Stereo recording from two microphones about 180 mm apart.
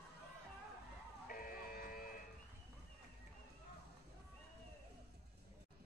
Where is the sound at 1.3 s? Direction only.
50° left (ahead or behind).